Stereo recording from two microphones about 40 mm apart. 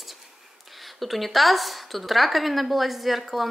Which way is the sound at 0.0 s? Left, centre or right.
Centre.